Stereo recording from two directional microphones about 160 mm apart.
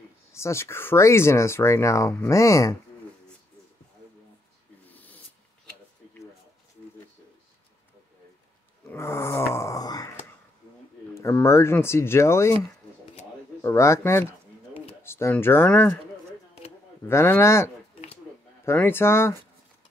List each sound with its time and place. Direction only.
0.3 s speech: 15° left (ahead or behind)
4.8 s dog: 10° left (ahead or behind)
8.9 s grunt: 15° left (ahead or behind)
11.1 s speech: 15° left (ahead or behind)
13.6 s speech: 15° left (ahead or behind)
17.0 s speech: 15° left (ahead or behind)
18.7 s speech: 15° left (ahead or behind)